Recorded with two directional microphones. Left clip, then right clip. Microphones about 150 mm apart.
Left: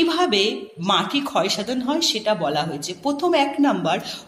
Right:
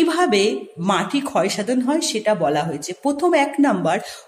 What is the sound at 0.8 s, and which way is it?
Speech, 40° right (ahead or behind).